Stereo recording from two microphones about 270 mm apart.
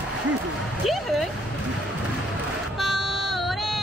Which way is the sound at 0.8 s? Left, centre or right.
Centre.